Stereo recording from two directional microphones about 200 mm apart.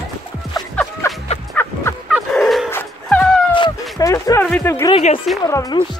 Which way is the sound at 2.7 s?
10° left (ahead or behind).